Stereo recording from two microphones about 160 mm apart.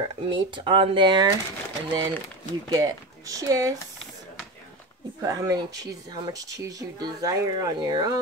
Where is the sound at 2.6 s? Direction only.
20° right (ahead or behind).